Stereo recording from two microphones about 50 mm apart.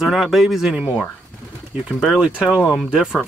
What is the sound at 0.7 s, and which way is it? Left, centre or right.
Speech, right.